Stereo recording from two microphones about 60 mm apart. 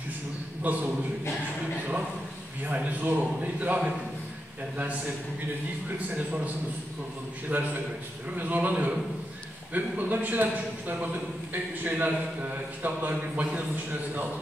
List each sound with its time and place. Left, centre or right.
0.7 s a man's voice: right
2.6 s a man's voice: right
5.9 s a man's voice: right